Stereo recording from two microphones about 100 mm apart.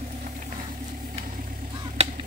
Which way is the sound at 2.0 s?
90° right.